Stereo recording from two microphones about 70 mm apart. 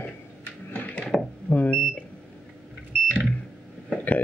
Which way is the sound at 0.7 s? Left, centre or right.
Left.